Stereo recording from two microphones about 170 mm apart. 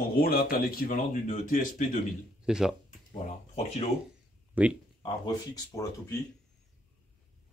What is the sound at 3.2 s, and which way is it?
Speech, 40° left (ahead or behind).